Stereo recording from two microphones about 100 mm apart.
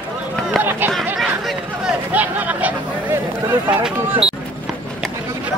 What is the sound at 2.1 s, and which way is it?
Speech, 15° right (ahead or behind).